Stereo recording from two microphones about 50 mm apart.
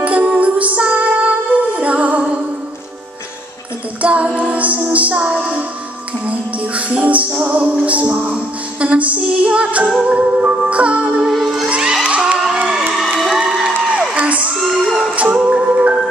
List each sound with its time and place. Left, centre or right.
0.0 s music: right
4.0 s child singing: right
4.4 s music: right
11.1 s music: centre
11.6 s music: centre
12.6 s crowd: centre
13.2 s a sound: centre
14.1 s crowd: right
14.6 s a sound: centre
15.1 s music: right